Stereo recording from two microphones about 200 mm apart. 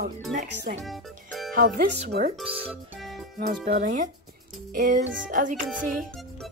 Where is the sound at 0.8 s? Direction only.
Centre (ahead or behind).